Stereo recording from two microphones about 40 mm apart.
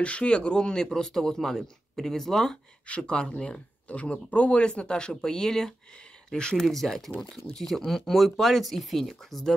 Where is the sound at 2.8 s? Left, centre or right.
Left.